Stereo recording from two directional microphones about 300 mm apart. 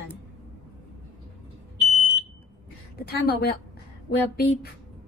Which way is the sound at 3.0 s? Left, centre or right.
Left.